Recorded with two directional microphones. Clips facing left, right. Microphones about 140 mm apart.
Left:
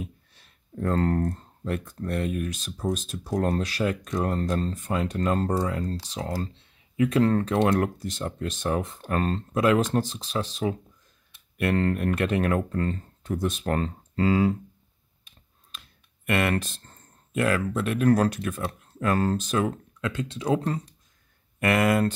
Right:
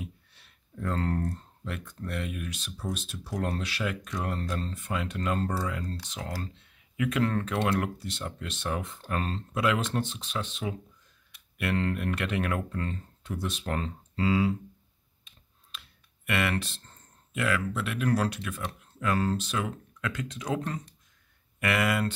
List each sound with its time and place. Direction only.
0.0 s speech: 40° left (ahead or behind)
16.3 s speech: 45° left (ahead or behind)
20.0 s speech: 30° left (ahead or behind)